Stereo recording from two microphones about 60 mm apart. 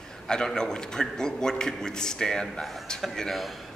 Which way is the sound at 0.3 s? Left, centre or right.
Centre.